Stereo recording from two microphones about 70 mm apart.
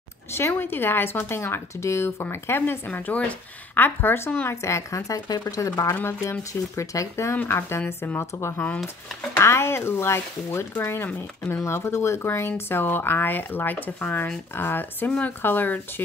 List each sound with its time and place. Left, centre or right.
0.3 s speech: left
4.5 s speech: left
6.7 s speech: left
7.3 s speech: left
11.6 s speech: left